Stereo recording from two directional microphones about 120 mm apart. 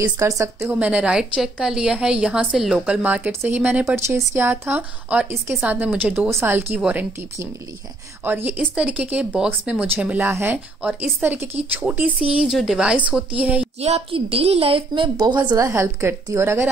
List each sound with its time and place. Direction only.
0.0 s a woman's voice: 25° right (ahead or behind); by 13.7 s 10° right (ahead or behind)
13.7 s a woman's voice: 60° right (ahead or behind); by 15.4 s 40° right (ahead or behind)
15.5 s speech: 25° right (ahead or behind)